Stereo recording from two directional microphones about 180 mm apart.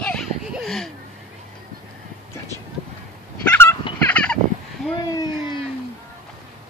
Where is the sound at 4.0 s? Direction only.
5° left (ahead or behind).